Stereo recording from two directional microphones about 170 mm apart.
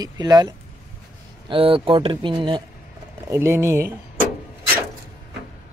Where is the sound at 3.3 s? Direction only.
15° right (ahead or behind).